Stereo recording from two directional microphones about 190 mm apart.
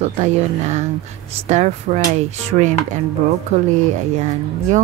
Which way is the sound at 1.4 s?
35° right (ahead or behind).